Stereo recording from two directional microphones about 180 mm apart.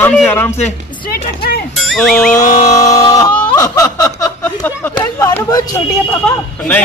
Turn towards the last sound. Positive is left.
turn(degrees=10)  # may be behind; listen again after turning